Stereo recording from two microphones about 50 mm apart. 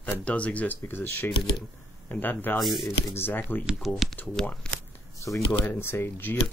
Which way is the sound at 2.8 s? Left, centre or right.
Left.